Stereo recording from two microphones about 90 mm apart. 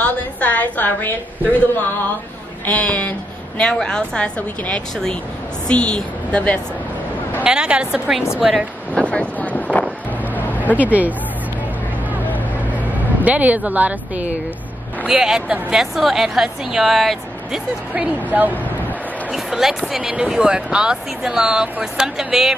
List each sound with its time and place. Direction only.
0.0 s a woman's voice: 15° left (ahead or behind)
2.6 s a woman's voice: 15° left (ahead or behind)
7.4 s a woman's voice: 10° right (ahead or behind)
9.1 s vehicle: 15° left (ahead or behind)
10.8 s speech: 15° right (ahead or behind)
13.2 s a woman's voice: 15° right (ahead or behind); by 17.6 s centre (ahead or behind)
17.9 s speech: 15° right (ahead or behind)
19.3 s a woman's voice: 5° right (ahead or behind)